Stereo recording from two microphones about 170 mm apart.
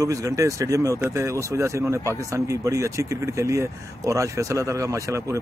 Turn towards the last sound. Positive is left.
turn(degrees=-15)  # may be behind; listen again after turning